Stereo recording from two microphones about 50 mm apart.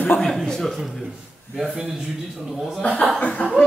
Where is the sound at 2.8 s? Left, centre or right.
Left.